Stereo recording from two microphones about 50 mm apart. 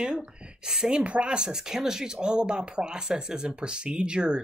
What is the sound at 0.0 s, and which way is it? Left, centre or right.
A woman's voice, centre.